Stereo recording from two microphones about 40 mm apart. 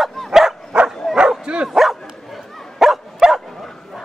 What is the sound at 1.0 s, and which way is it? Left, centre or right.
Bow-wow, centre.